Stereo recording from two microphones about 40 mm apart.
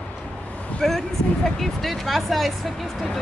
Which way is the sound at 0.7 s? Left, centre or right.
Centre.